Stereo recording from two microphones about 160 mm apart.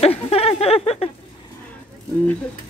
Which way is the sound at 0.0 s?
40° left (ahead or behind).